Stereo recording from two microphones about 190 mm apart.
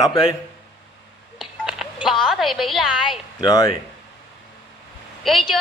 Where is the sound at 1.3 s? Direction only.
Centre (ahead or behind).